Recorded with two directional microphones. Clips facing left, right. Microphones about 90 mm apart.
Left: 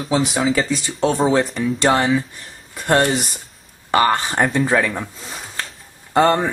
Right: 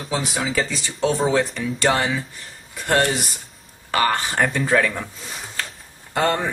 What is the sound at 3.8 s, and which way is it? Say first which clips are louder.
Speech: left 4 dB; 25° left (ahead or behind).